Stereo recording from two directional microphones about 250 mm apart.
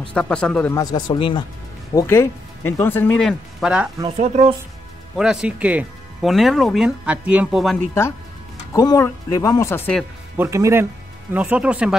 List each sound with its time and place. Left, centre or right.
0.1 s speech: centre
4.2 s speech: right
5.1 s speech: centre
10.3 s speech: centre